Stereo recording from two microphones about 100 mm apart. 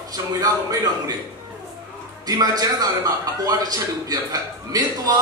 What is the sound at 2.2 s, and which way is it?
A man's voice, 40° right (ahead or behind).